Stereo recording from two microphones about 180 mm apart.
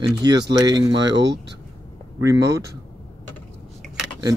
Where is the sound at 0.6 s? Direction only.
20° right (ahead or behind).